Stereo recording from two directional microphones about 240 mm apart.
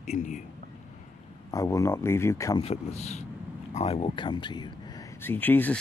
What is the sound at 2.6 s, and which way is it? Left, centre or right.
Speech, left.